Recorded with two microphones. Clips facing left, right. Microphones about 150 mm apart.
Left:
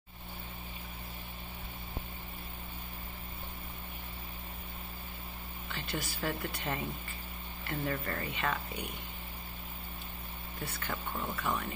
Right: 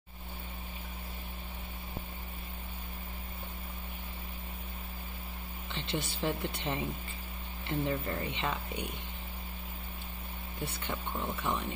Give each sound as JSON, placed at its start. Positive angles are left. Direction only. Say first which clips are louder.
{"t": 5.7, "sound": "speech", "louder": "right 2 dB", "side_deg": -25}
{"t": 10.6, "sound": "speech", "louder": "right 1 dB", "side_deg": -25}